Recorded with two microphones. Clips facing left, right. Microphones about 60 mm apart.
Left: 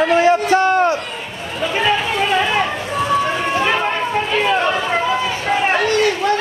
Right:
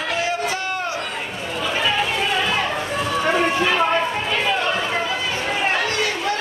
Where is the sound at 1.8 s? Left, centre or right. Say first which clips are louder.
Left 5 dB; left.